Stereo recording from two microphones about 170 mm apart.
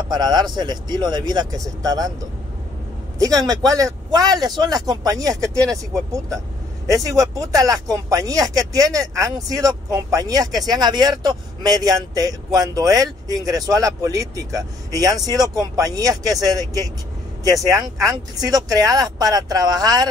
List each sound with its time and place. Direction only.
0.1 s speech: 25° right (ahead or behind)
3.2 s speech: 20° right (ahead or behind)